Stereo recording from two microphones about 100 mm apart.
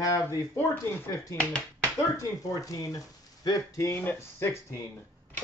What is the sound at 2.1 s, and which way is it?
Speech, 35° left (ahead or behind).